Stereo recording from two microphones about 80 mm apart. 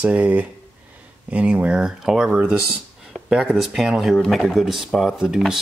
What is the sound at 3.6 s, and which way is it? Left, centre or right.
Speech, centre.